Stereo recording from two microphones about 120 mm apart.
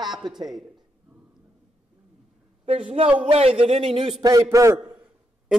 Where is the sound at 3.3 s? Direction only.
50° right (ahead or behind).